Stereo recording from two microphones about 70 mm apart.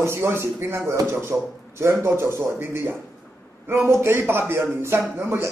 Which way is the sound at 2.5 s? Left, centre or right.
Right.